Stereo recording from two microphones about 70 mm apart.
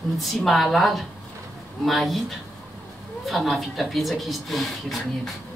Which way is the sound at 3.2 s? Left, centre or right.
Centre.